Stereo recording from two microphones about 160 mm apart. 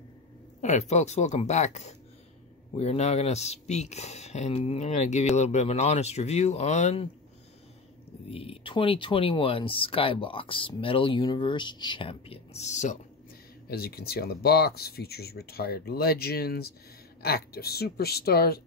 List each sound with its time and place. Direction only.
0.6 s speech: 45° left (ahead or behind)
8.3 s speech: 35° left (ahead or behind)
13.7 s speech: 75° left (ahead or behind)